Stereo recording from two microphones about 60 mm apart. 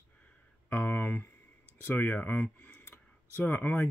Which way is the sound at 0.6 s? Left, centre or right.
Left.